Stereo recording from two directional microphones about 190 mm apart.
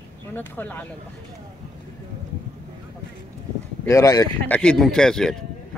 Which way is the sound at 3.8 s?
20° left (ahead or behind).